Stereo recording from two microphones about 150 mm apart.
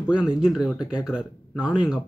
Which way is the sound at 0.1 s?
5° right (ahead or behind).